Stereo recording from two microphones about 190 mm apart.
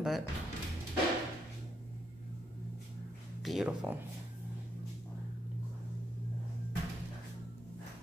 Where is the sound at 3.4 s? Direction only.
Centre (ahead or behind).